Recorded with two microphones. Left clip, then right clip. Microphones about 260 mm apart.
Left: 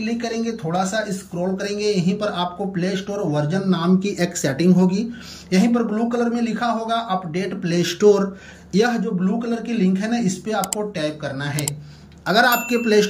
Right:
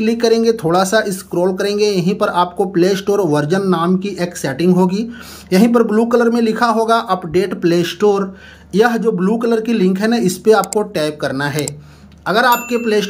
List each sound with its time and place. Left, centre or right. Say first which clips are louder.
0.0 s speech: right 12 dB; centre
12.3 s speech: right 4 dB; centre